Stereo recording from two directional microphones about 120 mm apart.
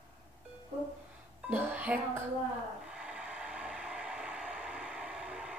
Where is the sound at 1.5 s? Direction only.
15° right (ahead or behind).